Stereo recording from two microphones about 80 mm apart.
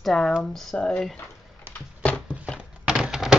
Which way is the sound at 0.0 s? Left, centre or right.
Centre.